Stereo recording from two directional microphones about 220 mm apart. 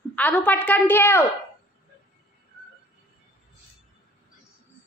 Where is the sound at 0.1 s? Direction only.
5° left (ahead or behind).